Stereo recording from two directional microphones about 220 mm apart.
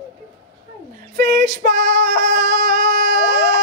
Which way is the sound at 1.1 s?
40° right (ahead or behind).